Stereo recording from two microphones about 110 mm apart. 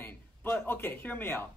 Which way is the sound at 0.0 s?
20° left (ahead or behind).